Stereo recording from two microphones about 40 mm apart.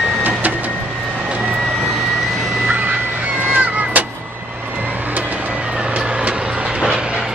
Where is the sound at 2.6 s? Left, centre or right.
Right.